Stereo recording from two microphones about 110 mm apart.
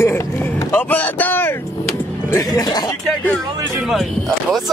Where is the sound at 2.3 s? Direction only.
35° left (ahead or behind).